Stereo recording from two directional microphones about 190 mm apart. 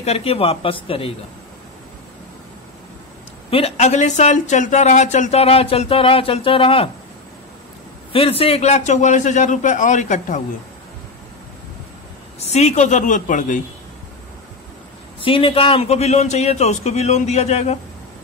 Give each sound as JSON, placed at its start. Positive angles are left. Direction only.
{"t": 0.0, "sound": "speech", "side_deg": 35}
{"t": 3.4, "sound": "speech", "side_deg": 30}
{"t": 8.1, "sound": "speech", "side_deg": 30}
{"t": 12.4, "sound": "speech", "side_deg": 35}
{"t": 15.1, "sound": "speech", "side_deg": 30}